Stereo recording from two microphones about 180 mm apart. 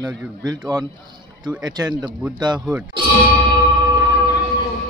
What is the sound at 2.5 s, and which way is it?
Speech, 5° right (ahead or behind).